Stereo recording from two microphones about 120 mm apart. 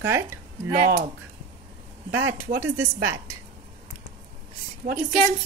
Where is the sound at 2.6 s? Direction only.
20° right (ahead or behind).